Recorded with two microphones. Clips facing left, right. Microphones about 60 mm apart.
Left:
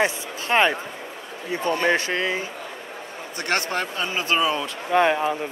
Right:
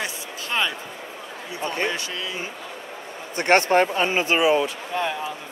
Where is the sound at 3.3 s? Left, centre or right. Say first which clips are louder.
Right 8 dB; right.